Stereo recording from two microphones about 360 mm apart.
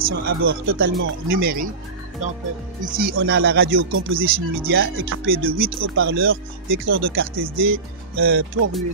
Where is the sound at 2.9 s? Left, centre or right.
Right.